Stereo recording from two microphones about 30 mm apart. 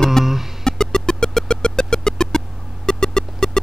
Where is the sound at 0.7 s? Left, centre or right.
Left.